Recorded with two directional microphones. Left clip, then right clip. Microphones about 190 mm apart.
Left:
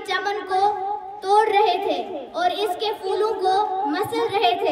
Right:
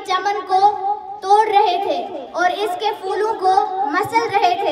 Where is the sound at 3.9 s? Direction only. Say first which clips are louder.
Right 5 dB; centre (ahead or behind).